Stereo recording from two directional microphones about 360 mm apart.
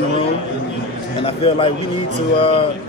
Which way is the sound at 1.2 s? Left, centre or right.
Centre.